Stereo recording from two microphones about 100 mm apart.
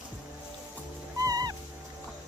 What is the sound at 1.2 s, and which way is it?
Music, 40° right (ahead or behind).